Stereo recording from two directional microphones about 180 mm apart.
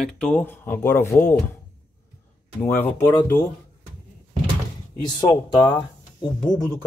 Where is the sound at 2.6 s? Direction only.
10° left (ahead or behind).